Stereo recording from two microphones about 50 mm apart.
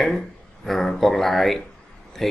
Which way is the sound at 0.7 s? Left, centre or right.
Centre.